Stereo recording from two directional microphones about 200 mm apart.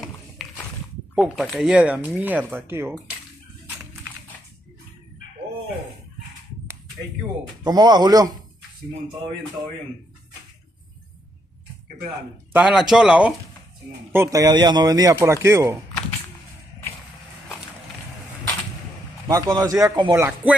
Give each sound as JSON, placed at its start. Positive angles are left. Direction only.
{"t": 0.4, "sound": "horse", "side_deg": 0}
{"t": 1.1, "sound": "speech", "side_deg": 0}
{"t": 7.6, "sound": "speech", "side_deg": -20}
{"t": 12.5, "sound": "speech", "side_deg": -5}
{"t": 14.1, "sound": "speech", "side_deg": -15}
{"t": 19.2, "sound": "speech", "side_deg": -15}